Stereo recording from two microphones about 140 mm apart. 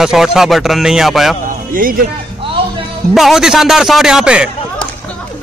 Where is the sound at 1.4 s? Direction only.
75° right (ahead or behind).